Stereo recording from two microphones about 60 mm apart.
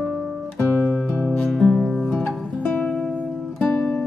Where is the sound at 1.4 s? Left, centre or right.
Centre.